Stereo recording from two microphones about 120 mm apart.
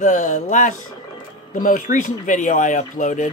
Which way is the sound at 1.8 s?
90° left.